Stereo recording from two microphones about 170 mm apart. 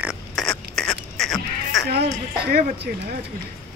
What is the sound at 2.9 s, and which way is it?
Speech, 60° right (ahead or behind).